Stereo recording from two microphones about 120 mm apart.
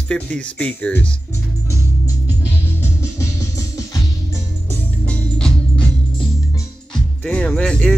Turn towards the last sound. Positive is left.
turn(degrees=10)  # may be behind; listen again after turning